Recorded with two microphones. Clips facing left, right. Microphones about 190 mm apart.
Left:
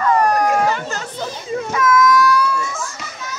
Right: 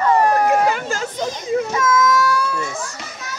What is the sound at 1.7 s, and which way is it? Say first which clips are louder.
Baby cry: left 6 dB; 25° right (ahead or behind).